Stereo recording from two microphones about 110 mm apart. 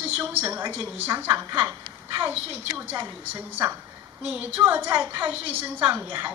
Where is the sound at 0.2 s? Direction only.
20° right (ahead or behind).